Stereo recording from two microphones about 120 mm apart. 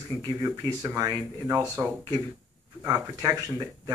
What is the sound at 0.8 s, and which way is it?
Speech, 30° right (ahead or behind).